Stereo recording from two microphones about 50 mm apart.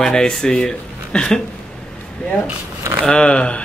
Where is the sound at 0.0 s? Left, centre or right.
Centre.